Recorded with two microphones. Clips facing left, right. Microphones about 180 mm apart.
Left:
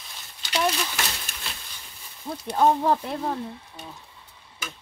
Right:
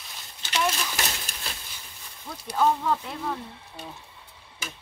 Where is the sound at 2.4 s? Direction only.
30° left (ahead or behind).